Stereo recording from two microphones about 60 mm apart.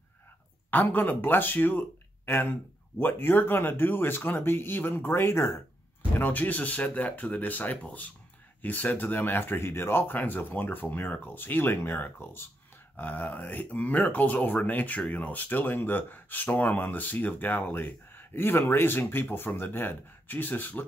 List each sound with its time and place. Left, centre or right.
0.7 s speech: left
6.1 s speech: left